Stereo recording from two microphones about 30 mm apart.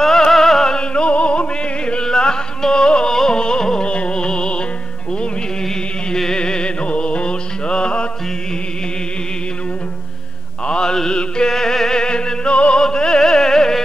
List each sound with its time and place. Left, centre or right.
0.0 s music: centre
0.7 s music: left
3.8 s music: left
6.3 s music: left
11.1 s music: left
11.5 s music: centre; by 12.8 s left
12.9 s music: left